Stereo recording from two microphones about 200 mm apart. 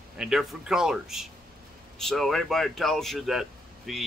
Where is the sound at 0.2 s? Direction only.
Centre (ahead or behind).